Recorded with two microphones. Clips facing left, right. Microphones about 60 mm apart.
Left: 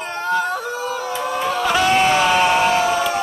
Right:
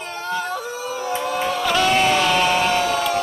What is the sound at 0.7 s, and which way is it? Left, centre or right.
Yodeling, centre.